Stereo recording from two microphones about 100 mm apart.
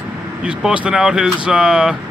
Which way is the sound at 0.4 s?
10° right (ahead or behind).